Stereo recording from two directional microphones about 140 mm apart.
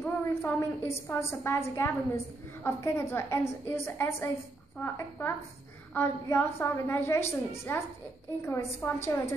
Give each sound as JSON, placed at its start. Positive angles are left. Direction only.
{"t": 0.0, "sound": "a woman's voice", "side_deg": 15}